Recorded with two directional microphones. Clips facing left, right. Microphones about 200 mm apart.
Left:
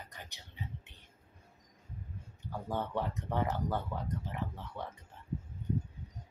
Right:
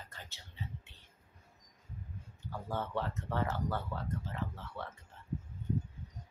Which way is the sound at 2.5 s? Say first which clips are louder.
Left 2 dB; 15° left (ahead or behind).